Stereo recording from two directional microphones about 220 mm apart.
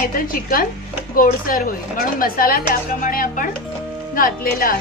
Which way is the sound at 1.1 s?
40° left (ahead or behind).